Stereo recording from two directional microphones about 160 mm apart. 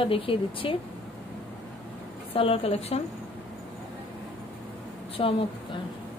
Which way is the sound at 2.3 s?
35° left (ahead or behind).